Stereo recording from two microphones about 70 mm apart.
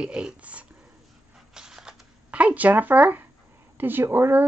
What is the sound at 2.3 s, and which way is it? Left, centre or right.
A woman's voice, right.